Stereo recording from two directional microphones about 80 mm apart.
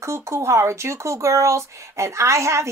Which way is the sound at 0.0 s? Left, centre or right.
Right.